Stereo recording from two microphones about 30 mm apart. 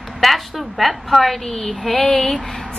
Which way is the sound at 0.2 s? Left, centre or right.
Centre.